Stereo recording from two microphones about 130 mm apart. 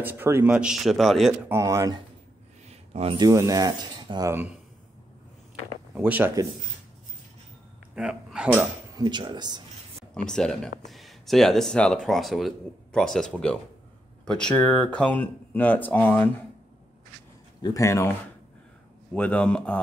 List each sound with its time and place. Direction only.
0.0 s speech: 15° right (ahead or behind); by 1.3 s centre (ahead or behind)
1.5 s speech: 25° right (ahead or behind)
2.9 s speech: 50° right (ahead or behind)
3.2 s speech: 30° right (ahead or behind)
5.9 s speech: 15° right (ahead or behind)
7.9 s speech: 5° right (ahead or behind)
8.9 s speech: 35° right (ahead or behind)
10.3 s speech: 5° left (ahead or behind)
17.6 s speech: 30° left (ahead or behind)
19.1 s speech: 10° left (ahead or behind)